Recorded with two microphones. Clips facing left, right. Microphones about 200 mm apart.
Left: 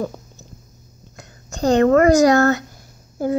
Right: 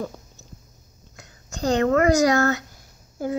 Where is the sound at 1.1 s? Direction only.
50° left (ahead or behind).